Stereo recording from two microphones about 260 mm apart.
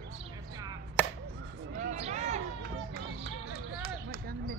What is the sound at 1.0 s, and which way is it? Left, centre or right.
Chop, centre.